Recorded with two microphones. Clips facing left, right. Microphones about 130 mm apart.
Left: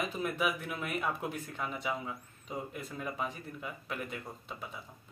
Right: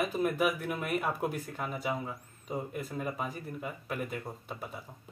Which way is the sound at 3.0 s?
50° right (ahead or behind).